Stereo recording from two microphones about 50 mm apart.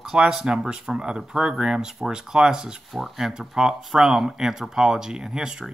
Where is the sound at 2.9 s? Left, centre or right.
Centre.